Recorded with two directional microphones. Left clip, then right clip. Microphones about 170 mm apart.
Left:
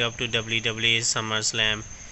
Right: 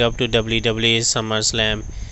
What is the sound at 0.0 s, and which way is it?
Speech, 45° right (ahead or behind).